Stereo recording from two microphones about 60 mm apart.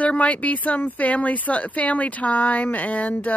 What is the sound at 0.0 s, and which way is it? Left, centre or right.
Speech, left.